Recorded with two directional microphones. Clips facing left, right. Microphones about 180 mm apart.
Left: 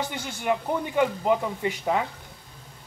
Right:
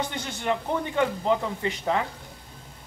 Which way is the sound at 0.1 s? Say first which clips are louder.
Left 1 dB; 10° left (ahead or behind).